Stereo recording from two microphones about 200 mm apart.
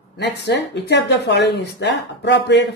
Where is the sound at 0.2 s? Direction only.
60° left (ahead or behind).